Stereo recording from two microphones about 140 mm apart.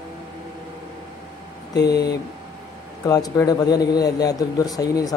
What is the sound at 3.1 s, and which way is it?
Speech, 25° left (ahead or behind).